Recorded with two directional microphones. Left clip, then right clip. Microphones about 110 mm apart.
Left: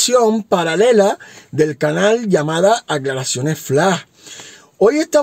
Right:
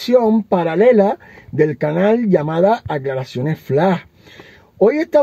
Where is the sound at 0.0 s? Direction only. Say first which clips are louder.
Left 1 dB; 20° left (ahead or behind).